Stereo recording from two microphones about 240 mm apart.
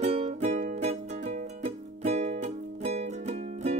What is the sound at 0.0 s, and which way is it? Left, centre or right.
Music, right.